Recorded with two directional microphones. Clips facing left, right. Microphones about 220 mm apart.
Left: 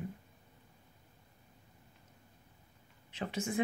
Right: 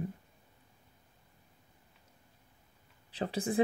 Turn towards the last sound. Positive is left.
turn(degrees=-35)  # may be behind; listen again after turning